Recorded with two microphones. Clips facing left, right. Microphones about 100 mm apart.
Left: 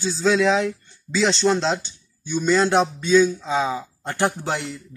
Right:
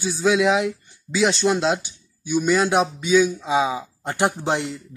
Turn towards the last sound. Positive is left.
turn(degrees=-20)  # may be behind; listen again after turning